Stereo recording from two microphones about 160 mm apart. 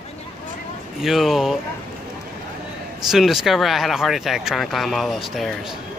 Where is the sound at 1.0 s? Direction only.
Centre (ahead or behind).